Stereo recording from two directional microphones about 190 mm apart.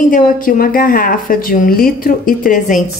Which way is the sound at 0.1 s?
50° left (ahead or behind).